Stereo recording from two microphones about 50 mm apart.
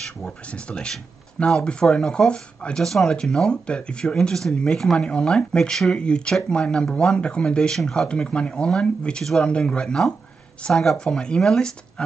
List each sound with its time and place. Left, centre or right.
0.5 s speech: centre
2.8 s speech: centre
8.1 s speech: left
11.1 s speech: centre